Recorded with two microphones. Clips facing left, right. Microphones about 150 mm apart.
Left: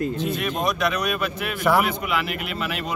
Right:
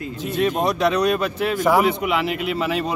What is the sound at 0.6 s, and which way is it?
Speech, 30° right (ahead or behind).